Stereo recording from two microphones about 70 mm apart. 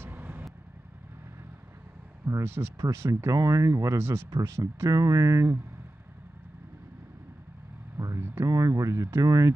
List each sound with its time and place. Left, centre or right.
0.0 s vehicle: right
2.2 s speech: right
4.9 s speech: right
8.0 s vehicle: right
8.5 s speech: right
9.2 s speech: right